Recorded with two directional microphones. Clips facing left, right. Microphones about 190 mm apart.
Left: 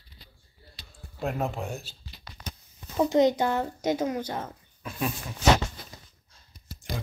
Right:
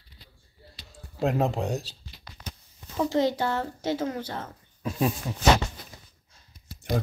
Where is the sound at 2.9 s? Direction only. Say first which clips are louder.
Left 3 dB; 20° left (ahead or behind).